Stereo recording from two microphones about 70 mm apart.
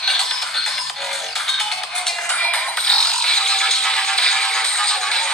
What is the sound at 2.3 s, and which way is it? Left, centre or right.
Music, centre.